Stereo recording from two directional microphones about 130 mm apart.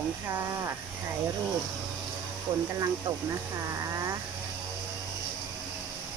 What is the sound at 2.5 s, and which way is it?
Speech, 40° right (ahead or behind).